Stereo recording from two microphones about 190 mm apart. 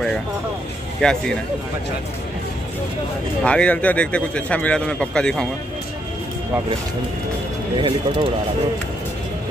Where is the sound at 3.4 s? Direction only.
5° left (ahead or behind).